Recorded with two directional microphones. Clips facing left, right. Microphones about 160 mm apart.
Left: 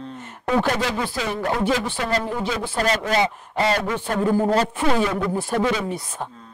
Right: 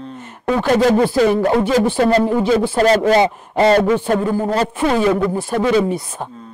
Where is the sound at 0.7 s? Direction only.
45° right (ahead or behind).